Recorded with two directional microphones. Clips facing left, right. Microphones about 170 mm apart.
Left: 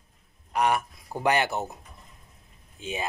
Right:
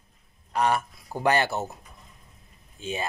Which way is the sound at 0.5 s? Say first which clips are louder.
Even; 15° left (ahead or behind).